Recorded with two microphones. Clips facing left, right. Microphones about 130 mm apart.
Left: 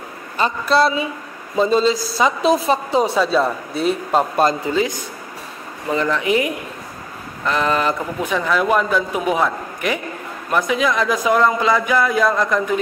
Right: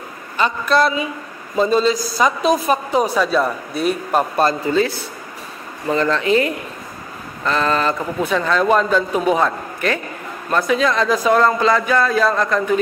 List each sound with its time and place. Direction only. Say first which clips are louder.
0.4 s speech: even; 30° left (ahead or behind); by 12.6 s 10° left (ahead or behind)